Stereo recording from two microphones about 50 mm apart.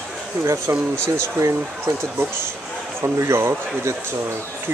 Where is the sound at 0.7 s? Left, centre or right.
Right.